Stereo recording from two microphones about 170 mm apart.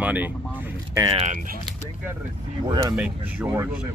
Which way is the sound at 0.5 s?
10° right (ahead or behind).